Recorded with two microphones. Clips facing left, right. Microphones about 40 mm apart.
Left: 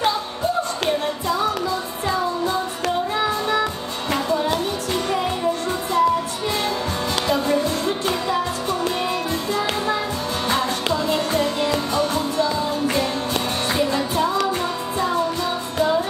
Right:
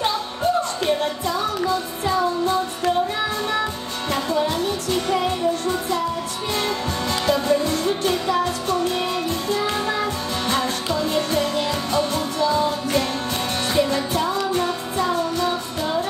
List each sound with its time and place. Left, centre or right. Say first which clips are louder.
5.7 s music: left 3 dB; left
7.7 s music: right 1 dB; left
10.5 s music: left 1 dB; left
13.7 s music: right 2 dB; left